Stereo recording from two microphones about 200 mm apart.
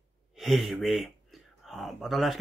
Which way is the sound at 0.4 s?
Centre (ahead or behind).